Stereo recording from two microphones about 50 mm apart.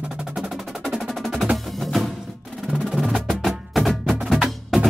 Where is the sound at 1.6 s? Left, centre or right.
Centre.